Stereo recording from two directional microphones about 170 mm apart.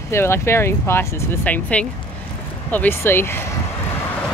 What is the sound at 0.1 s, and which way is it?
Speech, 15° left (ahead or behind).